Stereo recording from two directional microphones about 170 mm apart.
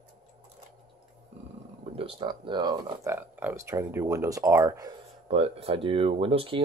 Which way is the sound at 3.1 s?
10° right (ahead or behind).